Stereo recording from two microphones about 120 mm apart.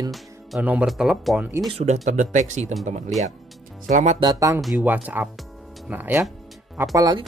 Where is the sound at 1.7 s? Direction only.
75° right (ahead or behind).